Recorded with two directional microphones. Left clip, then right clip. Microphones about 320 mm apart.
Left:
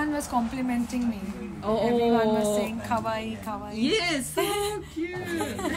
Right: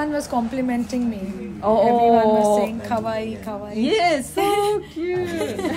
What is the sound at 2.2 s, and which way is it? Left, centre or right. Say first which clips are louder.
Speech: right 8 dB; right.